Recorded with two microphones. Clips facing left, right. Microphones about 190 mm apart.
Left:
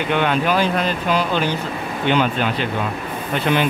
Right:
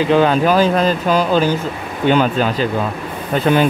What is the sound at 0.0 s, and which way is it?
Speech, 35° right (ahead or behind).